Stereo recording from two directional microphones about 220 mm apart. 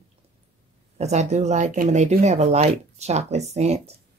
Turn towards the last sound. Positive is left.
turn(degrees=-30)  # may be behind; listen again after turning